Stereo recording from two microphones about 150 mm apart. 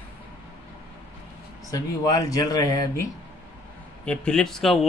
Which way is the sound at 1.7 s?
25° left (ahead or behind).